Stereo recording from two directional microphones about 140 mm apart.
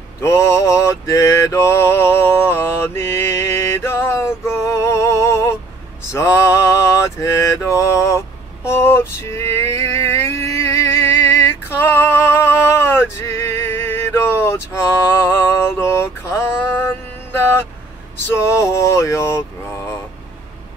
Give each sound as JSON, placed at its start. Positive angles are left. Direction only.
{"t": 0.2, "sound": "mantra", "side_deg": 20}
{"t": 4.5, "sound": "music", "side_deg": 20}
{"t": 6.1, "sound": "mantra", "side_deg": 20}
{"t": 8.6, "sound": "a sound", "side_deg": 15}
{"t": 17.3, "sound": "vehicle", "side_deg": 15}
{"t": 18.3, "sound": "male singing", "side_deg": 20}